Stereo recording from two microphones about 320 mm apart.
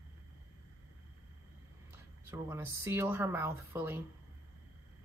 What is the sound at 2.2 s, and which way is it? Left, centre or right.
Speech, centre.